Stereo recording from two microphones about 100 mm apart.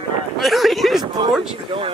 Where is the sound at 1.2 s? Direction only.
60° right (ahead or behind).